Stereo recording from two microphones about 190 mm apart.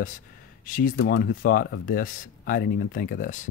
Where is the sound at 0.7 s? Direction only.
45° left (ahead or behind).